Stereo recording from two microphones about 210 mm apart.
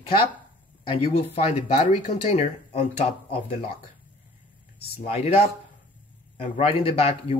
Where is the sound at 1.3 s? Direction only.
35° left (ahead or behind).